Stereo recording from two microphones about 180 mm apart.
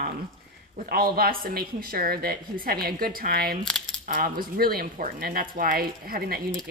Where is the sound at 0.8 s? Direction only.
55° right (ahead or behind).